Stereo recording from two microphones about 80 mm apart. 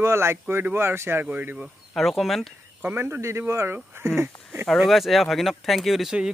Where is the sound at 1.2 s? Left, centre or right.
Right.